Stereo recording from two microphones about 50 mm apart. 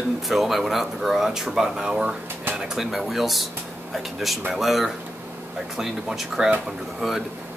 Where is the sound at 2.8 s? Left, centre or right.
Centre.